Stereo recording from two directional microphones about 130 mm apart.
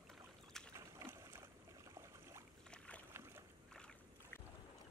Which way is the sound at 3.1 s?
20° right (ahead or behind).